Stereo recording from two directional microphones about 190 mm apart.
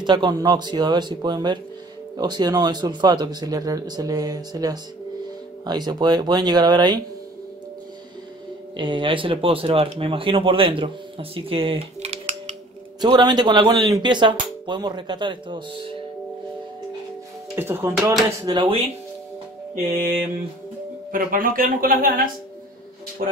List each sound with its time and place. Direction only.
0.0 s speech: 25° right (ahead or behind)
8.7 s speech: 25° right (ahead or behind)
13.0 s speech: 20° right (ahead or behind)
17.6 s speech: 10° right (ahead or behind)
18.4 s speech: 25° right (ahead or behind)
21.1 s speech: 45° right (ahead or behind)